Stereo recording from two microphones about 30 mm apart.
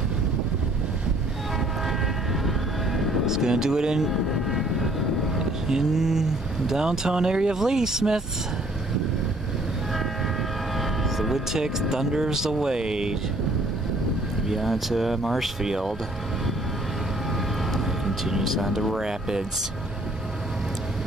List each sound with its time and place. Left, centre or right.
2.4 s train: centre
3.3 s speech: centre
4.3 s vehicle: centre
5.4 s speech: centre
10.8 s vehicle: centre
11.5 s speech: centre
14.5 s speech: centre
15.6 s speech: centre
17.7 s vehicle: centre
18.4 s speech: centre
18.9 s speech: right